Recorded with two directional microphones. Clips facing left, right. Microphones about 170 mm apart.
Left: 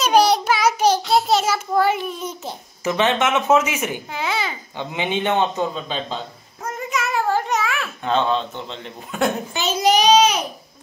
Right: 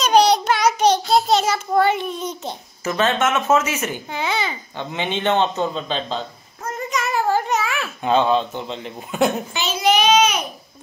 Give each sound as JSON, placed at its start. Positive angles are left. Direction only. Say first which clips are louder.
{"t": 0.0, "sound": "child singing", "louder": "right 1 dB", "side_deg": 5}
{"t": 4.2, "sound": "babbling", "louder": "right 1 dB", "side_deg": 0}
{"t": 4.7, "sound": "a man's voice", "louder": "left 2 dB", "side_deg": 15}
{"t": 6.6, "sound": "babbling", "louder": "right 1 dB", "side_deg": 5}
{"t": 9.5, "sound": "child singing", "louder": "left 1 dB", "side_deg": 45}